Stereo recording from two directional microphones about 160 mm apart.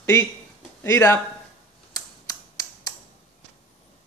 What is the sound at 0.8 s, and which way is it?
Speech, 20° left (ahead or behind).